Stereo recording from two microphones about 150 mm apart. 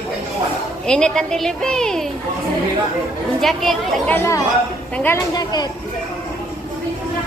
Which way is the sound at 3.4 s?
Centre (ahead or behind).